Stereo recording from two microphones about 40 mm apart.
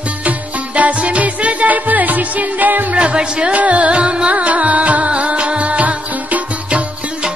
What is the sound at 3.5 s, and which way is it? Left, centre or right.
Music, right.